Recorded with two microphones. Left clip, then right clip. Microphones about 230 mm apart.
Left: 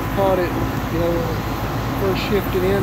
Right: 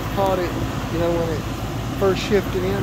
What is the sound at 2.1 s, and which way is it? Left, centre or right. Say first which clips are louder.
Speech: right 1 dB; right.